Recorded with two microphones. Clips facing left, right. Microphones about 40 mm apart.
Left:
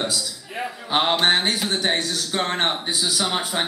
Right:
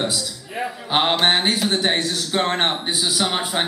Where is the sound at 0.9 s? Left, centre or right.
Centre.